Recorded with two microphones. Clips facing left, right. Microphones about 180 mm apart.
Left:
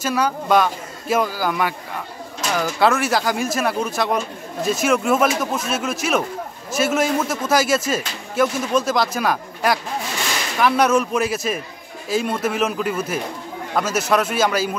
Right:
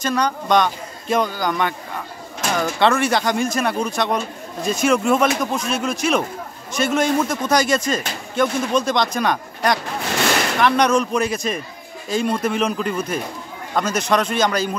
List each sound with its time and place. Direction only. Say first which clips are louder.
0.0 s speech: even; 5° left (ahead or behind)
10.1 s a sound: right 11 dB; 70° right (ahead or behind)
10.6 s speech: left 1 dB; 5° left (ahead or behind)